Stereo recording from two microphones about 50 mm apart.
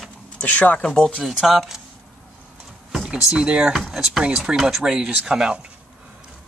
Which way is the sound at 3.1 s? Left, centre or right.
Centre.